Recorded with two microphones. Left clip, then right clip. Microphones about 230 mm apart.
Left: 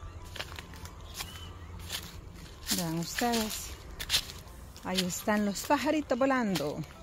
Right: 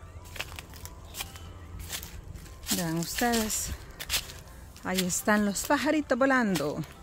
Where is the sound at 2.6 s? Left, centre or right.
Centre.